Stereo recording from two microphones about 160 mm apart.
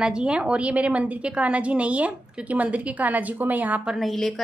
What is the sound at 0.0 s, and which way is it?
A woman's voice, 5° right (ahead or behind).